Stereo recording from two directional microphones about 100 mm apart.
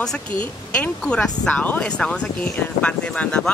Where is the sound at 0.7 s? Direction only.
10° left (ahead or behind).